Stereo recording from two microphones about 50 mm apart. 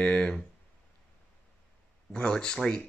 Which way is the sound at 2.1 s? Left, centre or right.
Centre.